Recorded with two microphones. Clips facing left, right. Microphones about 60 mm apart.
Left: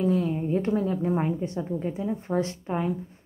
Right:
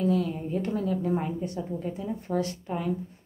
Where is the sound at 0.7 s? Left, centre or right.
Left.